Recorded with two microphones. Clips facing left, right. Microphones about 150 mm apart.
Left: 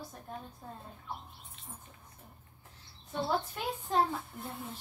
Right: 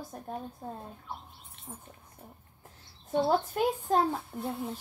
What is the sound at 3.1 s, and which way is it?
Speech, 45° right (ahead or behind).